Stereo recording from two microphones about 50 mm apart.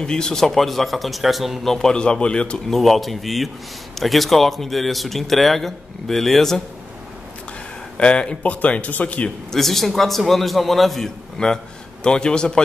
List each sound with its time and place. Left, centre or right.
0.0 s speech: centre
2.7 s a man's voice: centre
8.0 s speech: left
9.5 s a man's voice: centre